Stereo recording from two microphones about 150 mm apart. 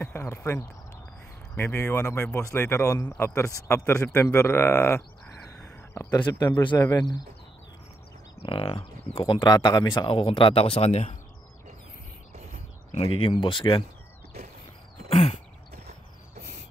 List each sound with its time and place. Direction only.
0.0 s a man's voice: 15° left (ahead or behind)
8.4 s speech: 40° left (ahead or behind)
13.0 s speech: 35° left (ahead or behind)
15.0 s a sound: 45° left (ahead or behind)